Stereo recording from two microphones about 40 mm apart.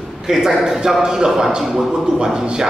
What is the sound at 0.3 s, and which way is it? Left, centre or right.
A man's voice, centre.